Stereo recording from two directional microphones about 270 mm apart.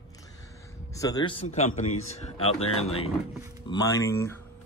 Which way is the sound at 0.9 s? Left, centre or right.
Centre.